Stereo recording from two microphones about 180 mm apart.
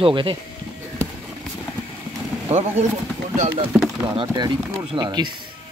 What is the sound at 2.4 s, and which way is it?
Speech, 35° right (ahead or behind).